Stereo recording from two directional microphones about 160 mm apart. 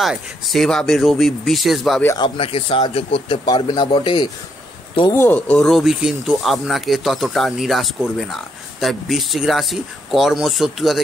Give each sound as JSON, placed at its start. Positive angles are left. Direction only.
{"t": 0.0, "sound": "speech", "side_deg": 0}
{"t": 2.0, "sound": "speech", "side_deg": 25}
{"t": 5.1, "sound": "speech", "side_deg": 10}